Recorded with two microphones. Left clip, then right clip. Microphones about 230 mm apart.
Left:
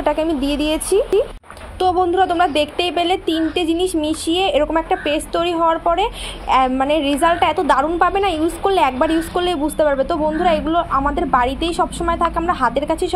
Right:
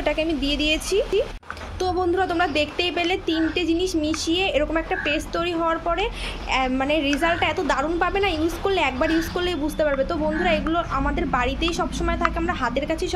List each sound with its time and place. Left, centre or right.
0.0 s speech: centre